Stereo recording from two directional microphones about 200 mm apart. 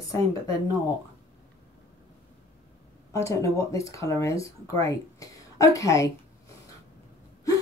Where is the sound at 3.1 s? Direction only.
15° left (ahead or behind).